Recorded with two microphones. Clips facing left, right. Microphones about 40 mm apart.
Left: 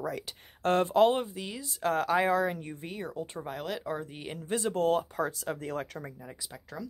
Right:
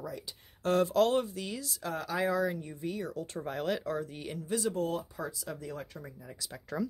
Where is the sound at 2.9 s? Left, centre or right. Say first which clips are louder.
Even; left.